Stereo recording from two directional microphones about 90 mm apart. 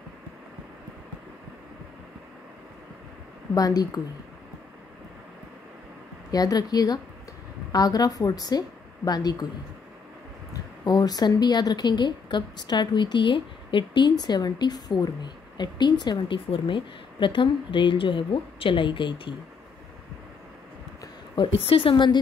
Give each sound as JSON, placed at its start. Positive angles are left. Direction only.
{"t": 3.5, "sound": "a woman's voice", "side_deg": 45}
{"t": 6.3, "sound": "a woman's voice", "side_deg": 45}
{"t": 10.9, "sound": "a woman's voice", "side_deg": 45}
{"t": 16.4, "sound": "a woman's voice", "side_deg": 75}
{"t": 21.4, "sound": "a woman's voice", "side_deg": 90}